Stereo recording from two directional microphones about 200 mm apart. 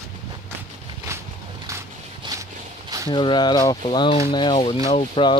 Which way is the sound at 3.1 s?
25° left (ahead or behind).